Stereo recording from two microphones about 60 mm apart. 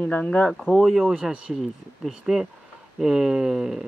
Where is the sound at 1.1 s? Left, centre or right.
Centre.